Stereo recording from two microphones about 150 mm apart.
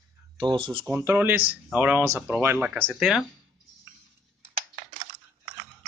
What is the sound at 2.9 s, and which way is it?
Speech, centre (ahead or behind).